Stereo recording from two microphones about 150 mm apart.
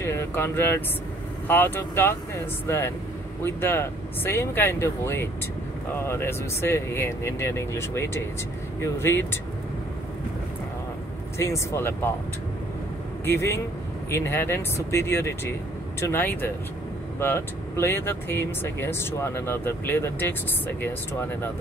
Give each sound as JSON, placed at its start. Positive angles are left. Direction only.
{"t": 0.0, "sound": "speech", "side_deg": 15}
{"t": 11.3, "sound": "speech", "side_deg": 20}
{"t": 13.2, "sound": "speech", "side_deg": 15}